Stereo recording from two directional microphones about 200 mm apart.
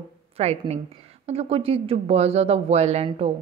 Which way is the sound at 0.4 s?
30° right (ahead or behind).